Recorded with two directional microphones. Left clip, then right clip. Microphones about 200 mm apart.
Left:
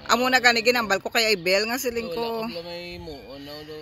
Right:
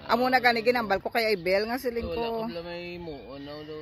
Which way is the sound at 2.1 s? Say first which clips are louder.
Left 2 dB; 35° right (ahead or behind).